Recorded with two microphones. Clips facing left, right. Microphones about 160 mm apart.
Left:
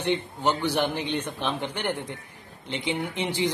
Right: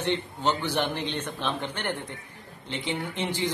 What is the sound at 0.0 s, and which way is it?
A man's voice, 15° left (ahead or behind).